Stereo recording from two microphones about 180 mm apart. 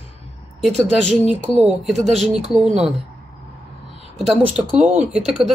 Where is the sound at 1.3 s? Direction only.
Centre (ahead or behind).